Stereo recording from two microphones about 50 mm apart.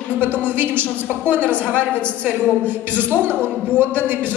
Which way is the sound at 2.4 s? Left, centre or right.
Left.